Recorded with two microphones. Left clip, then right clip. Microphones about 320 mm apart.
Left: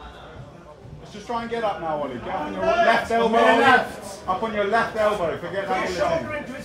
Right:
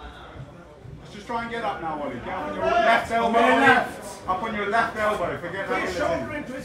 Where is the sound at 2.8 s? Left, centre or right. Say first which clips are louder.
Left 1 dB; left.